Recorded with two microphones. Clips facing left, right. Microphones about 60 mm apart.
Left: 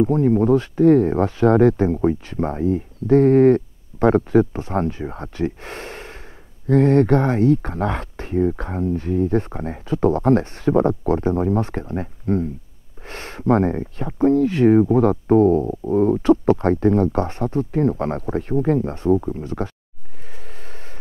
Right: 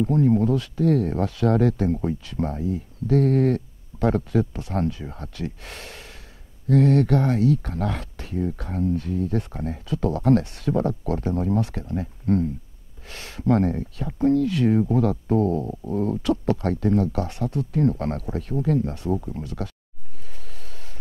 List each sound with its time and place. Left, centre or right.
0.0 s speech: left